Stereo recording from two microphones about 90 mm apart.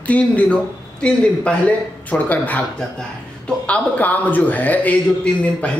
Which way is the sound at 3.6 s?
15° left (ahead or behind).